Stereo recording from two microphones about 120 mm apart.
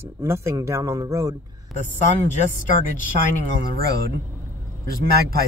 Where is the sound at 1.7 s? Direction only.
Centre (ahead or behind).